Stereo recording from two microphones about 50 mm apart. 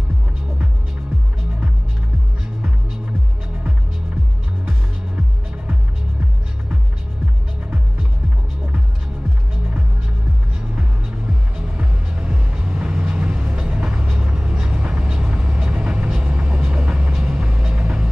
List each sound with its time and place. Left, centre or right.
10.6 s music: centre
14.0 s vehicle: centre